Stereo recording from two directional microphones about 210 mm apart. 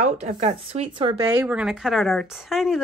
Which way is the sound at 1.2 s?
5° right (ahead or behind).